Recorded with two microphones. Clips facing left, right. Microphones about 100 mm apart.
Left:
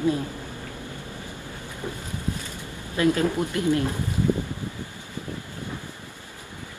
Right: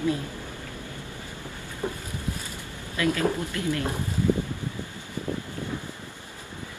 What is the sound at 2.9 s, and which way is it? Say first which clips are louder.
Speech: left 3 dB; 25° left (ahead or behind).